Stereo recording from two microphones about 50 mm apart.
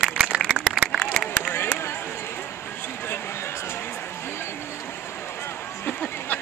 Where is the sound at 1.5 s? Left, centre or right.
Left.